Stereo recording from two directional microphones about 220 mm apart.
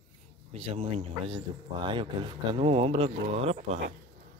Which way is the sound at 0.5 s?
25° right (ahead or behind).